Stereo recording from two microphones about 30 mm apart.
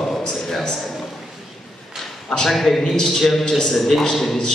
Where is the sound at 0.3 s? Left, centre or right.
Centre.